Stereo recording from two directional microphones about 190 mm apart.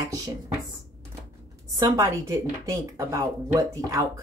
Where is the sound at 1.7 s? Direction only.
20° right (ahead or behind).